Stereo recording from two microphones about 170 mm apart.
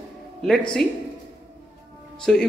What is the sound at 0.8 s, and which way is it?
Speech, 5° left (ahead or behind).